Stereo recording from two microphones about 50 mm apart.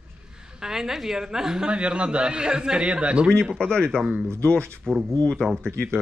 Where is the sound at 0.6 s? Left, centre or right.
Centre.